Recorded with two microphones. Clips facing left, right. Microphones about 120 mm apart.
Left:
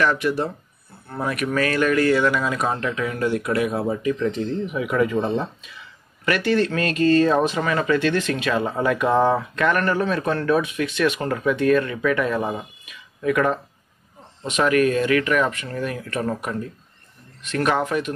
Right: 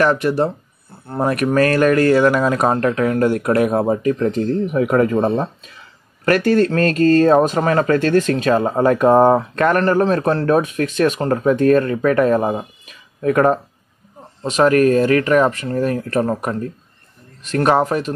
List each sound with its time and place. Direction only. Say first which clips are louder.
0.0 s speech: right 5 dB; 40° right (ahead or behind)